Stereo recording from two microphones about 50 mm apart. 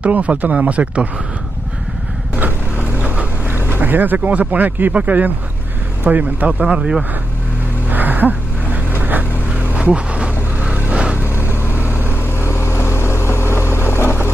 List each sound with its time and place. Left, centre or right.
0.0 s speech: right
2.3 s vehicle: right
3.7 s speech: right
6.6 s speech: centre
7.9 s a sound: right
9.8 s vehicle: right
11.2 s vehicle: left